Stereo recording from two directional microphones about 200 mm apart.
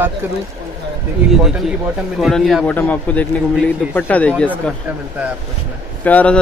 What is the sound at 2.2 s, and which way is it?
A man's voice, centre (ahead or behind).